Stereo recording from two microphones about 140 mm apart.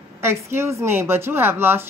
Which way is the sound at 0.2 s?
20° right (ahead or behind).